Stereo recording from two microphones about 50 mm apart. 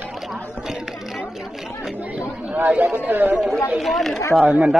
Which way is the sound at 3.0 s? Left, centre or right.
Right.